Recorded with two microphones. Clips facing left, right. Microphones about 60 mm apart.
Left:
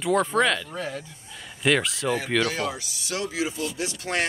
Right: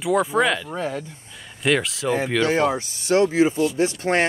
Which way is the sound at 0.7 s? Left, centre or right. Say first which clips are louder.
Right 5 dB; right.